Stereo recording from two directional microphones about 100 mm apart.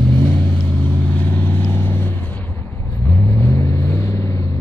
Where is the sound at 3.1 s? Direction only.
10° left (ahead or behind).